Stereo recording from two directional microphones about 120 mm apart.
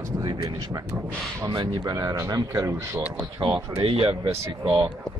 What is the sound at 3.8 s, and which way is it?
Speech, 50° right (ahead or behind).